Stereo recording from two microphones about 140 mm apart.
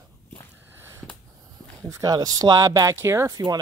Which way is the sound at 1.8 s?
25° right (ahead or behind).